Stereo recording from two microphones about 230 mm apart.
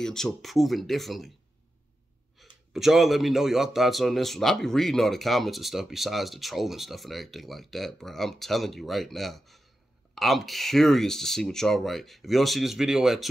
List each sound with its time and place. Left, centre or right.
0.0 s speech: centre
2.4 s a sound: centre
2.7 s speech: centre